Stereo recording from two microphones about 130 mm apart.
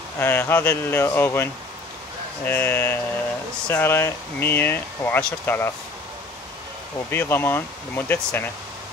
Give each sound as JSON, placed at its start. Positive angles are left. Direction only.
{"t": 0.2, "sound": "speech", "side_deg": 15}
{"t": 7.1, "sound": "speech", "side_deg": 15}